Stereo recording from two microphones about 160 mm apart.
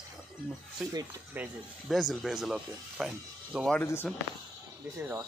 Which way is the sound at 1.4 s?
Centre (ahead or behind).